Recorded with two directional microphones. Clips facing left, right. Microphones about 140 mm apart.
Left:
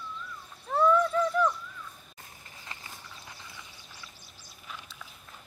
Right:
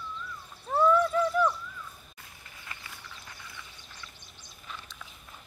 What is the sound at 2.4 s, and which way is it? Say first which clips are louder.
Horse: even; 30° left (ahead or behind).